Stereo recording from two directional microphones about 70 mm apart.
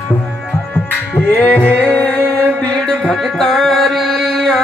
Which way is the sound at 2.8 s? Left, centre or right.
Centre.